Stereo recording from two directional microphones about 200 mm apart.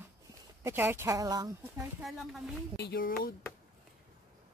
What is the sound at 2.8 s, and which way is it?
Speech, 50° left (ahead or behind).